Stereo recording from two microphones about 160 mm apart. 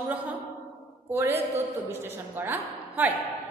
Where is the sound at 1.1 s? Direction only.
15° right (ahead or behind).